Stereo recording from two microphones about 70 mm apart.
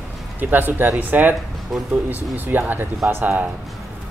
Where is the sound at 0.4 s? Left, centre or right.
Right.